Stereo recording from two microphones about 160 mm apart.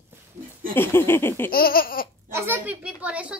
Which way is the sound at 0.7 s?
15° left (ahead or behind).